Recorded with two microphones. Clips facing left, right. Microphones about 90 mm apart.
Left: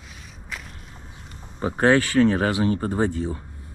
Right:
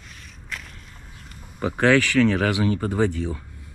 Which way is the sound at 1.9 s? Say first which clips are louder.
Even; 90° right.